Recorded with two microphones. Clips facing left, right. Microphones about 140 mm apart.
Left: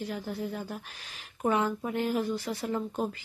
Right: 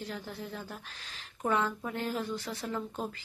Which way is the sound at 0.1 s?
10° left (ahead or behind).